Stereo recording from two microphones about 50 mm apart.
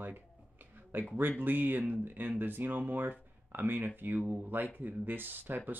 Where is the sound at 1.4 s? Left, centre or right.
Right.